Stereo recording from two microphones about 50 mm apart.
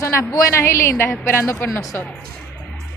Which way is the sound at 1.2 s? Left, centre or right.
Left.